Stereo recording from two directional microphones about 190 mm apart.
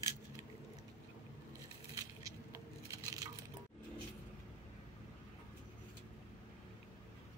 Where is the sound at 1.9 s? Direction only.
15° right (ahead or behind).